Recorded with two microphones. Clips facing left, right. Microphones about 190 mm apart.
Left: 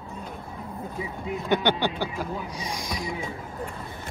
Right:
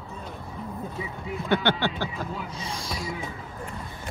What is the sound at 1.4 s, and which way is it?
Speech, 15° left (ahead or behind).